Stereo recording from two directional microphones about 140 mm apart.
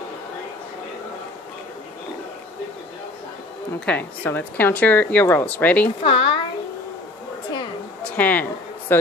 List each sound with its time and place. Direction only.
3.8 s speech: 10° left (ahead or behind)
6.0 s a woman's voice: 40° left (ahead or behind)
8.0 s a sound: 10° left (ahead or behind)